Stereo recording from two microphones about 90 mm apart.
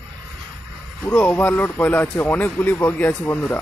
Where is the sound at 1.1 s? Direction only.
20° left (ahead or behind).